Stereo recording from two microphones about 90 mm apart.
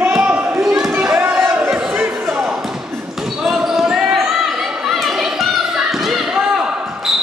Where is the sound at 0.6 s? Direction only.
5° right (ahead or behind).